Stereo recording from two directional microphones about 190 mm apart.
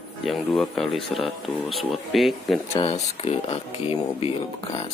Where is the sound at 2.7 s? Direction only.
30° left (ahead or behind).